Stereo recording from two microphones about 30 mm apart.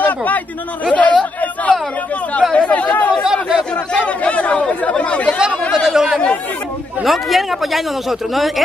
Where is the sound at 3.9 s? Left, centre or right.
Left.